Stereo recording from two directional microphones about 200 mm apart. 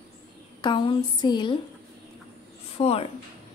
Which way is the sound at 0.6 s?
25° left (ahead or behind).